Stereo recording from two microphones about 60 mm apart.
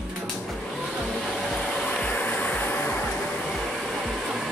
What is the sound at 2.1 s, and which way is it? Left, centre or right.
Train, left.